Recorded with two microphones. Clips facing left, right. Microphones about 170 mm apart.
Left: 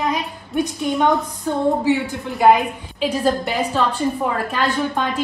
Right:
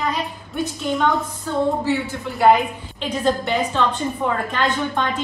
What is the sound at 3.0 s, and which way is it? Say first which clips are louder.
A woman's voice: left 2 dB; 5° left (ahead or behind).